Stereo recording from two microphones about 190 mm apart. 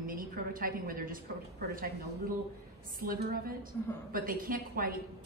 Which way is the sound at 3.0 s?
50° right (ahead or behind).